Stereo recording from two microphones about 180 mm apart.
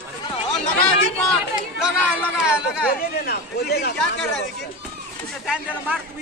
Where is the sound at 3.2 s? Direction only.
60° left (ahead or behind).